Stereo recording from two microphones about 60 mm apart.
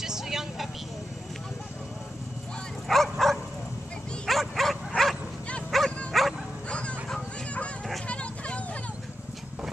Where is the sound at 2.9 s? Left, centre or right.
Centre.